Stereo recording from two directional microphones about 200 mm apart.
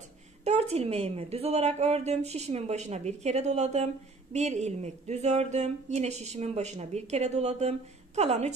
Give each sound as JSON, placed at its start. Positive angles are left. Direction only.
{"t": 0.4, "sound": "a woman's voice", "side_deg": -35}